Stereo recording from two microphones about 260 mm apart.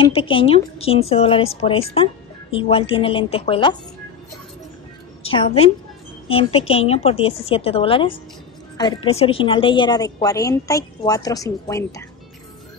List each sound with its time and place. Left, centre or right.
0.0 s speech: left
5.2 s a woman's voice: left